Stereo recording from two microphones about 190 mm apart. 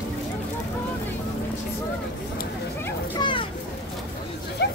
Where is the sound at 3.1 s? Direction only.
25° left (ahead or behind).